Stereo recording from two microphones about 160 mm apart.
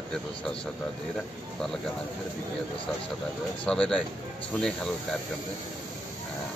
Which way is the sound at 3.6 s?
5° left (ahead or behind).